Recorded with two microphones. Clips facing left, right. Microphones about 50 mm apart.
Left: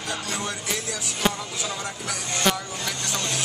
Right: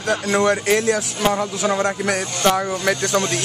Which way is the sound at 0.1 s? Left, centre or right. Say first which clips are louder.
Right 13 dB; right.